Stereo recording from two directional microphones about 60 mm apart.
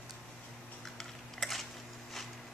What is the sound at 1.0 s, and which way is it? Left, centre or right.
Typing, centre.